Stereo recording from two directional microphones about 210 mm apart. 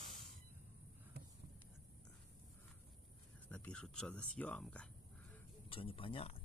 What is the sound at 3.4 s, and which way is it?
Speech, 5° left (ahead or behind).